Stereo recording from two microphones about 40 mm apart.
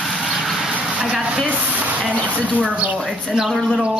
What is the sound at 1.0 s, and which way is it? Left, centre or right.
Speech, right.